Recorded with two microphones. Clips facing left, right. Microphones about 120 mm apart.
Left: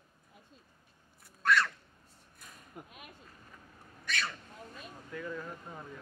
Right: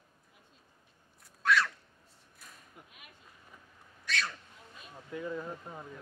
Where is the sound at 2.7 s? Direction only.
50° left (ahead or behind).